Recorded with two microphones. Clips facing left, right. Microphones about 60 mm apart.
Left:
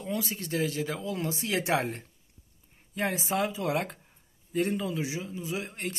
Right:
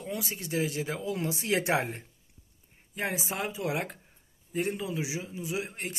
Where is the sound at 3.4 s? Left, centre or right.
Centre.